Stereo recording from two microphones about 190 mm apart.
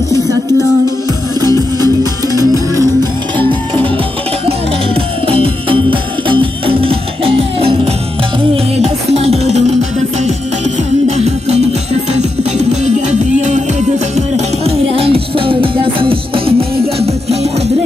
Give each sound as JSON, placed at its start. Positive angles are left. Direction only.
{"t": 2.2, "sound": "music", "side_deg": -20}
{"t": 4.5, "sound": "music", "side_deg": -30}
{"t": 11.1, "sound": "music", "side_deg": -35}